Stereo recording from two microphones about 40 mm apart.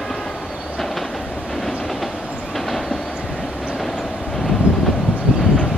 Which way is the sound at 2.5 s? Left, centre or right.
Centre.